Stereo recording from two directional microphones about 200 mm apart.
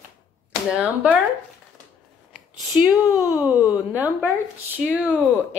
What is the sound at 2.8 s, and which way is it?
Speech, centre (ahead or behind).